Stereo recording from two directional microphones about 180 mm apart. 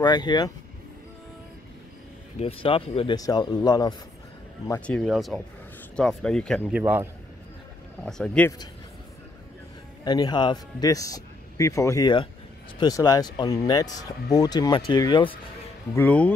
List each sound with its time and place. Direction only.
0.0 s speech: 25° left (ahead or behind)
2.3 s speech: 30° left (ahead or behind)
4.8 s speech: centre (ahead or behind)
6.7 s a man's voice: 10° right (ahead or behind)
8.0 s speech: 5° left (ahead or behind)
10.0 s speech: 25° left (ahead or behind)
15.9 s speech: 10° left (ahead or behind)